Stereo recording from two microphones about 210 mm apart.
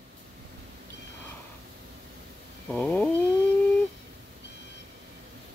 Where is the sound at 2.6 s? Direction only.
5° left (ahead or behind).